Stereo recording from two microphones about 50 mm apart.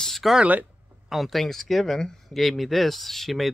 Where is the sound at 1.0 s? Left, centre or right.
Centre.